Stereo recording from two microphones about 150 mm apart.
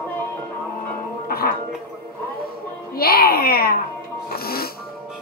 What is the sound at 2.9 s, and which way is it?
Babbling, 90° left.